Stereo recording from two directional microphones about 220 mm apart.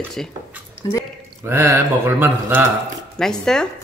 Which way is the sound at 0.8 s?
15° left (ahead or behind).